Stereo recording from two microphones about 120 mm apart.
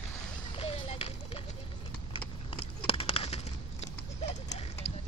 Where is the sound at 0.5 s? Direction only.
55° left (ahead or behind).